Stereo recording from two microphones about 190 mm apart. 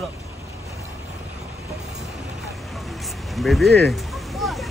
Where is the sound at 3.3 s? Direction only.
Centre (ahead or behind).